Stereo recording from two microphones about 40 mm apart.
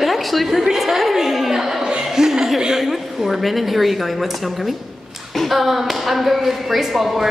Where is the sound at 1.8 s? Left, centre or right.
Centre.